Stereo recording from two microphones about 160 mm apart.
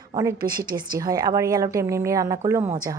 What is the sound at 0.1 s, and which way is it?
A woman's voice, 25° right (ahead or behind).